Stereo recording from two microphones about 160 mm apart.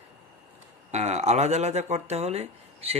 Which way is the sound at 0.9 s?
45° right (ahead or behind).